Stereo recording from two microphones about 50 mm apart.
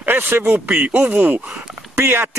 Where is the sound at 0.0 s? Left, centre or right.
Right.